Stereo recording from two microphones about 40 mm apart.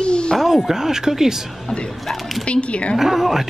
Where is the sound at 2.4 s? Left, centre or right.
Left.